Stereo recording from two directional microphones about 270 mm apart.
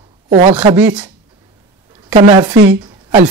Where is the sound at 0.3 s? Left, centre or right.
Right.